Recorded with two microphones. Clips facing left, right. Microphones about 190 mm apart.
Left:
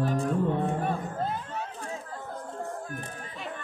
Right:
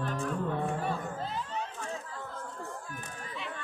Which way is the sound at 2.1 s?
50° left (ahead or behind).